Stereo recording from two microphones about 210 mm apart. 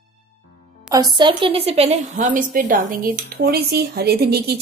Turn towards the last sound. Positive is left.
turn(degrees=-50)  # may be behind; listen again after turning